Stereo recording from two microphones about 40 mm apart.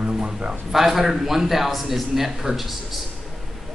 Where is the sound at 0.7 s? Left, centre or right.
Centre.